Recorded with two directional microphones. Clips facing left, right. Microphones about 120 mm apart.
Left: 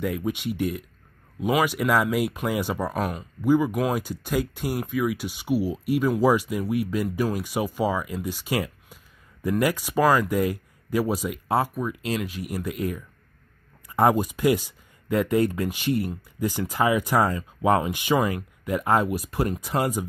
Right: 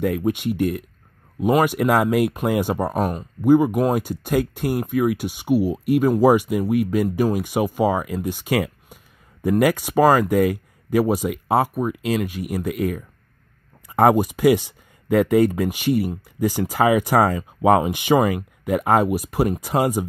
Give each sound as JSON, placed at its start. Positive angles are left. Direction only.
{"t": 0.0, "sound": "speech", "side_deg": -50}